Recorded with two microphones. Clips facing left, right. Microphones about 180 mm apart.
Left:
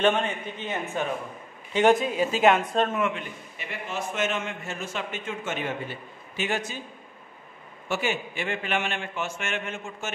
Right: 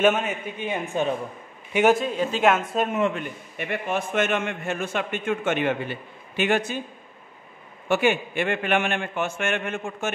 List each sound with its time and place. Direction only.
0.0 s a man's voice: 5° right (ahead or behind)
2.0 s speech: 5° left (ahead or behind)
3.2 s a man's voice: 60° right (ahead or behind)
7.9 s a man's voice: 60° right (ahead or behind)